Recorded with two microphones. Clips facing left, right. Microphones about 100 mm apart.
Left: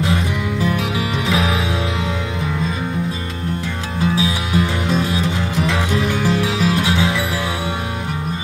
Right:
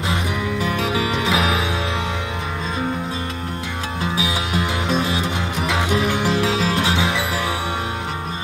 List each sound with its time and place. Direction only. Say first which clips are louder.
0.7 s music: even; 30° right (ahead or behind)
4.2 s music: left 3 dB; 20° right (ahead or behind)